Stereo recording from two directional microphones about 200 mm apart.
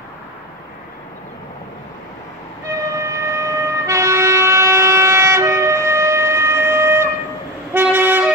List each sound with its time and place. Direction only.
2.6 s train: 15° right (ahead or behind)
7.7 s vehicle: 10° right (ahead or behind)